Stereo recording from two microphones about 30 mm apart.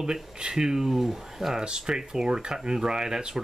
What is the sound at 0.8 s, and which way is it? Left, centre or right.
Speech, centre.